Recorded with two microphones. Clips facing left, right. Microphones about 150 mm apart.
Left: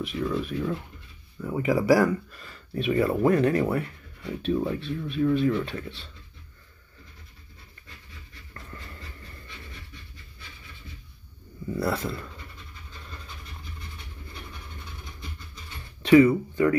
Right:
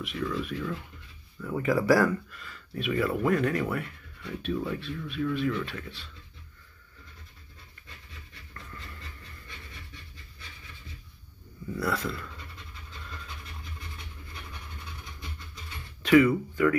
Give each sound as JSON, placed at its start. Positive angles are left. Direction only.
{"t": 0.0, "sound": "speech", "side_deg": 30}
{"t": 2.3, "sound": "speech", "side_deg": 35}
{"t": 11.7, "sound": "speech", "side_deg": 25}
{"t": 16.3, "sound": "speech", "side_deg": 30}